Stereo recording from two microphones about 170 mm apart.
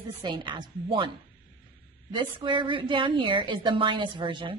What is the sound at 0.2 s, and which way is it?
Speech, 25° right (ahead or behind).